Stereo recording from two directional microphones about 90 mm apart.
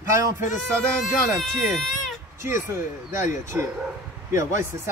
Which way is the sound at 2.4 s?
30° right (ahead or behind).